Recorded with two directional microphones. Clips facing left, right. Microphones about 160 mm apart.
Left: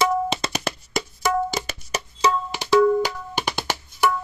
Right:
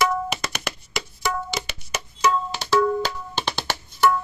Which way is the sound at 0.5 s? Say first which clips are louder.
Left 4 dB; 40° left (ahead or behind).